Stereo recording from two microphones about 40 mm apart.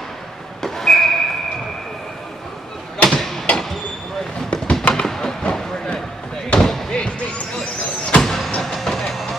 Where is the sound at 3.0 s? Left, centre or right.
Centre.